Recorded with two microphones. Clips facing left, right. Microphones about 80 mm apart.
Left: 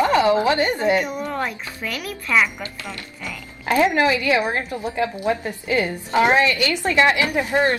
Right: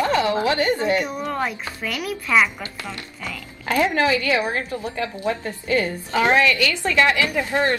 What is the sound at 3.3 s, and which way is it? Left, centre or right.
A woman's voice, left.